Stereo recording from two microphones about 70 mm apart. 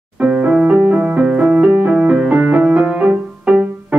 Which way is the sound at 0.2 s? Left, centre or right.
Right.